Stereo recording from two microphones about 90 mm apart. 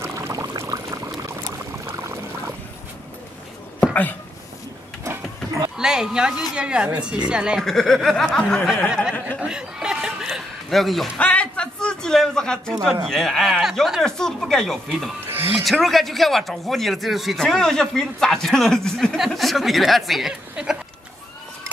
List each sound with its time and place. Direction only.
0.0 s pour: 30° right (ahead or behind)
0.3 s pour: 40° right (ahead or behind)
5.8 s a sound: 10° right (ahead or behind)
6.5 s speech: 10° right (ahead or behind)
7.6 s speech: 5° left (ahead or behind)
8.6 s speech: 5° right (ahead or behind)
9.4 s chuckle: 10° right (ahead or behind)
11.1 s a sound: 15° left (ahead or behind)
13.0 s speech: 5° left (ahead or behind)
15.2 s a sound: 25° right (ahead or behind)
15.8 s speech: centre (ahead or behind)